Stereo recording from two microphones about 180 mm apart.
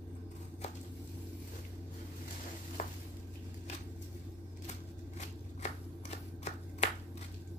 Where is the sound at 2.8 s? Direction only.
40° left (ahead or behind).